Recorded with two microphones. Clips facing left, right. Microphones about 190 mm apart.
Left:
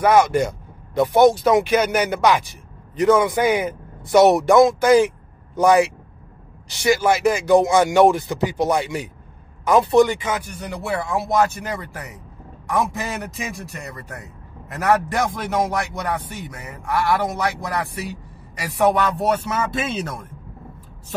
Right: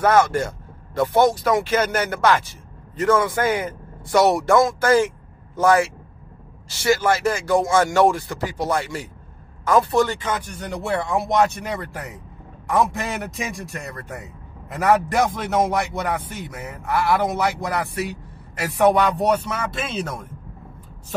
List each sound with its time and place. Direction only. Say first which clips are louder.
0.0 s a man's voice: left 2 dB; 15° left (ahead or behind)